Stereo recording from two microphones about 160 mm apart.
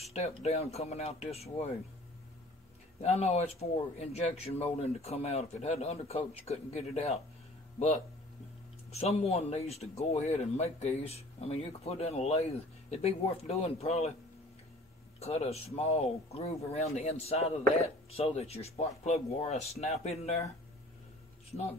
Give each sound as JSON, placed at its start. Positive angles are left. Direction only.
{"t": 0.0, "sound": "speech", "side_deg": 40}
{"t": 3.0, "sound": "speech", "side_deg": 40}
{"t": 9.0, "sound": "speech", "side_deg": 40}
{"t": 15.1, "sound": "speech", "side_deg": 40}